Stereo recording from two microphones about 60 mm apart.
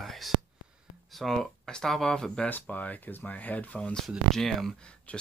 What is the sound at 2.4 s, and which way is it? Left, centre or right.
Speech, left.